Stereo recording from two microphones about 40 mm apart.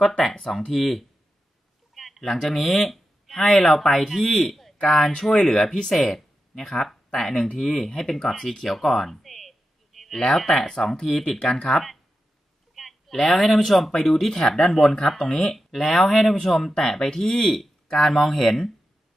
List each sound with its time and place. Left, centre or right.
0.3 s speech: centre
2.0 s a sound: centre
2.3 s speech: centre
2.7 s a sound: centre
3.6 s speech: centre
5.9 s speech: centre
8.0 s speech: centre
12.7 s a sound: centre
13.6 s speech: centre